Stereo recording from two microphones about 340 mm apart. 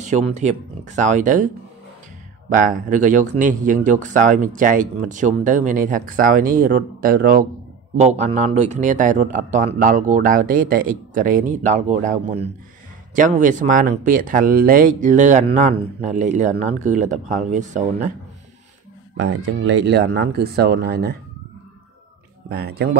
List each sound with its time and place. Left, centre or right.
0.0 s speech: right
2.5 s speech: right
19.1 s speech: right
22.5 s speech: right